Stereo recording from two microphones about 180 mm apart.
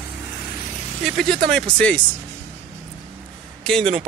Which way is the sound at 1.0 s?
Centre (ahead or behind).